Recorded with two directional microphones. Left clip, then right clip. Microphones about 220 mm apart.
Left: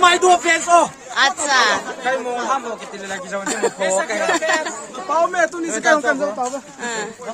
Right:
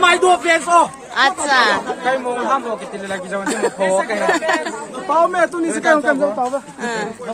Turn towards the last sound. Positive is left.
turn(degrees=0)  # may be behind; listen again after turning